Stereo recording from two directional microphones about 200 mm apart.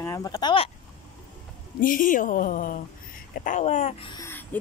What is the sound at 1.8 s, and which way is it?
A woman's voice, 45° left (ahead or behind).